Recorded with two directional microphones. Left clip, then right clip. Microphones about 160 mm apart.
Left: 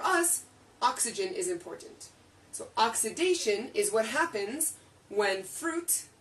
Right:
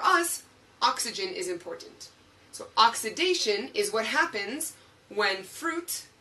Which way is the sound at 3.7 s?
20° left (ahead or behind).